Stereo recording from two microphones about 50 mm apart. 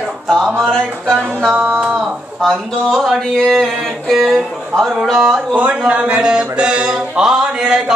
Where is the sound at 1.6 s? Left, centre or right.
Right.